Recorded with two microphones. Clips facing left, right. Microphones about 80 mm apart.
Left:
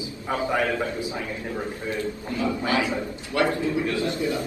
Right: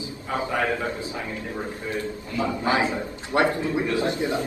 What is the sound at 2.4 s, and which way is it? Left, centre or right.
A man's voice, right.